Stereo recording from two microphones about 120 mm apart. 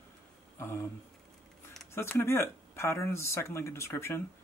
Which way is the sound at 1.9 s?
20° left (ahead or behind).